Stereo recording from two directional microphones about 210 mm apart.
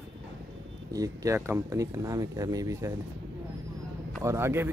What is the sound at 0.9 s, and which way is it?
Speech, 15° right (ahead or behind).